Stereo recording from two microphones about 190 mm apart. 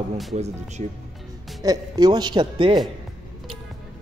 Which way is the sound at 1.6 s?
20° right (ahead or behind).